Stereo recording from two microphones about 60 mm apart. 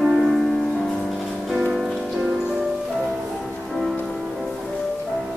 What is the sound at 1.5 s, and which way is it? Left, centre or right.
Music, centre.